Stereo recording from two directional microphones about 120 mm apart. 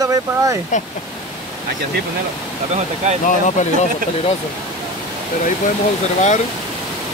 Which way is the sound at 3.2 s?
85° left.